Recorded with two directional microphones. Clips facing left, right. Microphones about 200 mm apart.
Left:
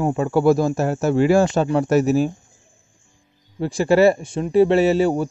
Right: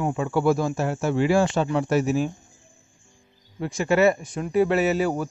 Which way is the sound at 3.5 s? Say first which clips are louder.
Left 5 dB; 35° left (ahead or behind).